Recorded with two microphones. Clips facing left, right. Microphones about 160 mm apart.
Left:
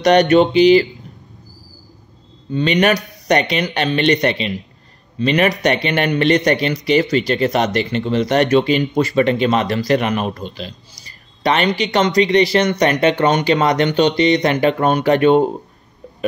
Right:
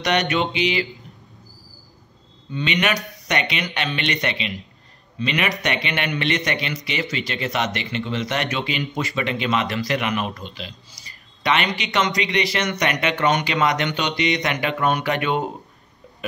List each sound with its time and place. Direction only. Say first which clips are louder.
0.0 s speech: left 10 dB; 40° left (ahead or behind)
2.5 s speech: left 8 dB; 40° left (ahead or behind)